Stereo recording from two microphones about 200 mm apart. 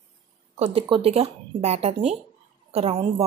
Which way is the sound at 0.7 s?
25° right (ahead or behind).